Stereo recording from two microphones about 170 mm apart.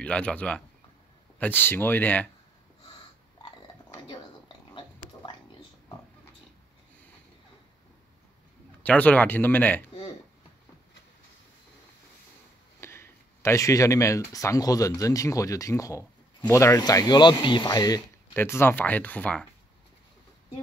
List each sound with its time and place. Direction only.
0.0 s speech: 5° left (ahead or behind)
4.7 s pig: 30° left (ahead or behind)
8.8 s speech: 10° left (ahead or behind)
12.8 s speech: 15° left (ahead or behind)